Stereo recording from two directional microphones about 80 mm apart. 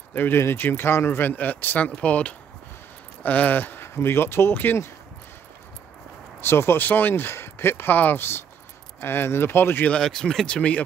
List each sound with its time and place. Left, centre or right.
0.1 s speech: left
6.4 s speech: left
9.8 s speech: centre